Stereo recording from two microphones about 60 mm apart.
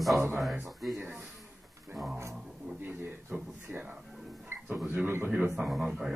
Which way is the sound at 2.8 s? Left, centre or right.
Right.